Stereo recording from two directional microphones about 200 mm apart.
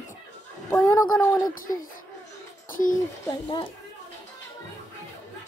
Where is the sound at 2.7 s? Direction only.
40° left (ahead or behind).